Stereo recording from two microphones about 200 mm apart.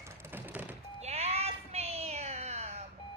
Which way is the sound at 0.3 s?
10° right (ahead or behind).